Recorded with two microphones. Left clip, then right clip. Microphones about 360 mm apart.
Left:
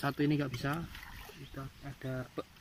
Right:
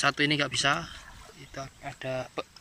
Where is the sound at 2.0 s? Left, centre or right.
Right.